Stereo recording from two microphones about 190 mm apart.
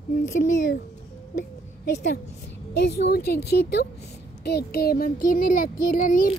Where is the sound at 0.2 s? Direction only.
45° left (ahead or behind).